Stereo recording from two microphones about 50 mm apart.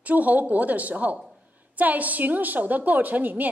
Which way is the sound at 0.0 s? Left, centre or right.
Right.